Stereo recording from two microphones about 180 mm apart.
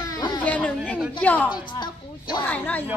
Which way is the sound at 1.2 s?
10° left (ahead or behind).